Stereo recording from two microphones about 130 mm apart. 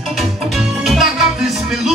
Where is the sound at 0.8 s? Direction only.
Centre (ahead or behind).